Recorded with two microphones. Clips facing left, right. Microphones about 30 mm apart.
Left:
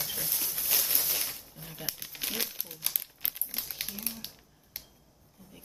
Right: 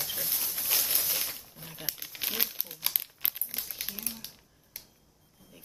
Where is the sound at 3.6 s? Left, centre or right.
Centre.